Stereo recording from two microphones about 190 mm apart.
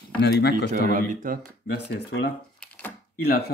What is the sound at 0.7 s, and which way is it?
Speech, 45° right (ahead or behind).